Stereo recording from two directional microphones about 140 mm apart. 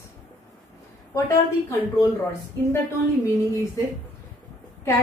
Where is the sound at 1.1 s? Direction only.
25° left (ahead or behind).